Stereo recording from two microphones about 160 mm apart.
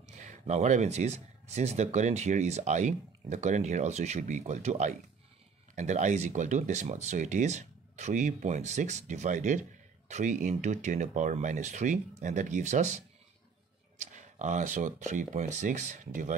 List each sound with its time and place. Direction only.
0.2 s speech: 45° right (ahead or behind)